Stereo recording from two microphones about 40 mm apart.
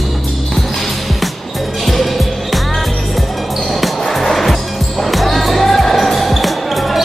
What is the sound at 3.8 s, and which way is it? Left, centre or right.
Basketball bounce, centre.